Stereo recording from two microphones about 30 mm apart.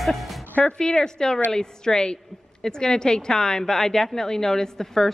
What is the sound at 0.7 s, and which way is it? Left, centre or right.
A woman's voice, left.